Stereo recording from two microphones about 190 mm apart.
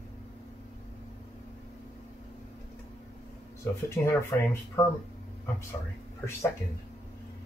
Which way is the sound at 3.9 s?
15° left (ahead or behind).